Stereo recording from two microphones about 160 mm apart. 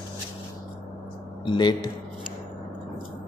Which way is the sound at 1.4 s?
30° left (ahead or behind).